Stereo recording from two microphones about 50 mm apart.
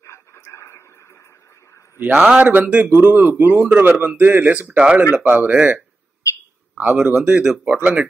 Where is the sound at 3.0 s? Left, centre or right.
Right.